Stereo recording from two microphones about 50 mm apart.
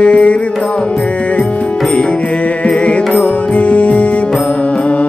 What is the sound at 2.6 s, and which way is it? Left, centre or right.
Music, left.